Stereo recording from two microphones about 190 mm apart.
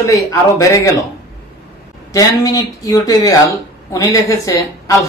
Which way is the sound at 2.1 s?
20° left (ahead or behind).